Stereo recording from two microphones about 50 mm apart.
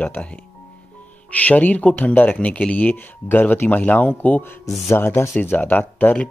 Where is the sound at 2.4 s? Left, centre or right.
Left.